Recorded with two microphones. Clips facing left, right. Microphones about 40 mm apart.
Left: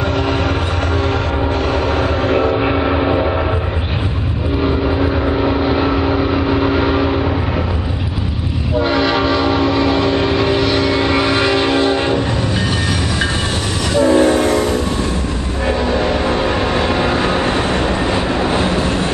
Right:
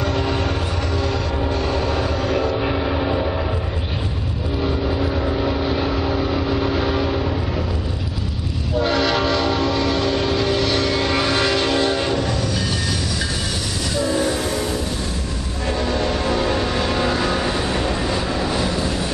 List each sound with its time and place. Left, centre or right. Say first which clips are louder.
1.7 s vehicle: left 5 dB; left
4.6 s vehicle: left 5 dB; left
8.8 s train: left 3 dB; centre
13.9 s train: left 10 dB; left
15.8 s vehicle: left 3 dB; left